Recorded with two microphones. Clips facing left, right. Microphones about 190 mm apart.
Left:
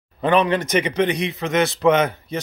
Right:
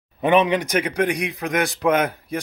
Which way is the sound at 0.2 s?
20° right (ahead or behind).